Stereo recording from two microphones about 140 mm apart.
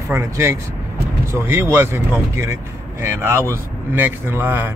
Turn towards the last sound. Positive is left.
turn(degrees=-15)  # may be behind; listen again after turning